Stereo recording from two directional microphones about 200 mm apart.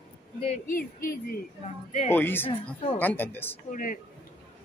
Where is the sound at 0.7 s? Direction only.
45° left (ahead or behind).